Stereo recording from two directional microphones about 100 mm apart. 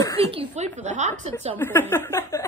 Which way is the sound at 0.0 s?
35° left (ahead or behind).